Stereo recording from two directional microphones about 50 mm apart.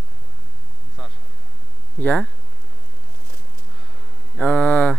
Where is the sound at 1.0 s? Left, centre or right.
Centre.